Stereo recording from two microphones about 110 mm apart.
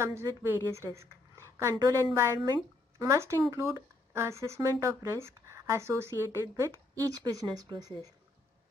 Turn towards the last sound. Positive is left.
turn(degrees=-35)  # may be behind; listen again after turning